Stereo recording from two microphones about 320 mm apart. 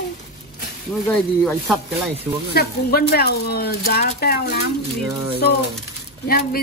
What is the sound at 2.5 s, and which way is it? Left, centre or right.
Speech, left.